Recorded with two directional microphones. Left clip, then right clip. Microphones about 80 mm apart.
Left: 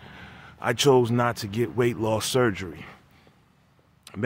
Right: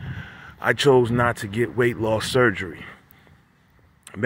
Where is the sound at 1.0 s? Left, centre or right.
Centre.